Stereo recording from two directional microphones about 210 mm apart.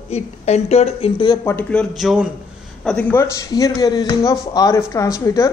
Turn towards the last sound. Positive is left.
turn(degrees=15)  # may be behind; listen again after turning